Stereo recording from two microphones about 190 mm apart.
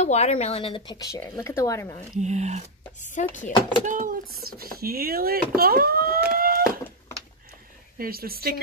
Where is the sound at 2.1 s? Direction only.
35° right (ahead or behind).